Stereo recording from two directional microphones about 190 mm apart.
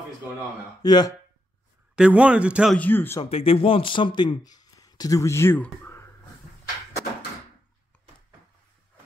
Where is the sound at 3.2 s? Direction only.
30° left (ahead or behind); by 6.0 s 10° left (ahead or behind).